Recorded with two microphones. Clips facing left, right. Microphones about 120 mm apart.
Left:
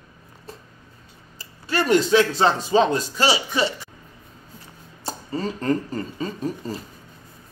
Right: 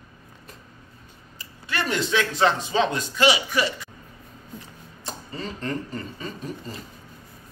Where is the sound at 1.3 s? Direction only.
35° left (ahead or behind).